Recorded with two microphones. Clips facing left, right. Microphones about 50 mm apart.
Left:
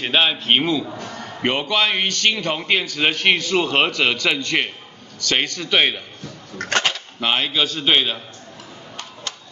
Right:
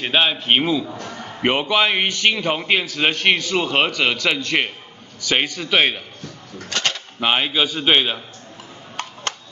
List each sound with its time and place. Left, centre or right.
0.0 s a man's voice: centre
0.8 s a man's voice: centre
1.1 s a man's voice: centre
6.7 s a sound: left
7.2 s a man's voice: centre